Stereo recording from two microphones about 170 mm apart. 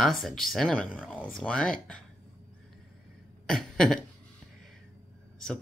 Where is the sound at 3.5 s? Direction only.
Centre (ahead or behind).